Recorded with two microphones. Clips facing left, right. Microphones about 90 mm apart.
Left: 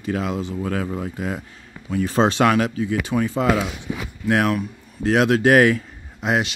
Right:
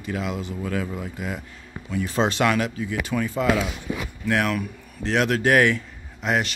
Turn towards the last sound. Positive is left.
turn(degrees=40)  # may be behind; listen again after turning